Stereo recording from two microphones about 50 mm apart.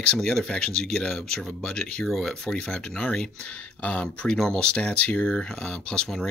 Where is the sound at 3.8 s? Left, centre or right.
Left.